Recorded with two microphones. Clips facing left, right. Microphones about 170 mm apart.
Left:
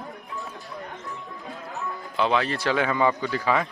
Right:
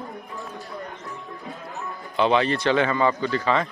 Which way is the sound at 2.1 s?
Centre (ahead or behind).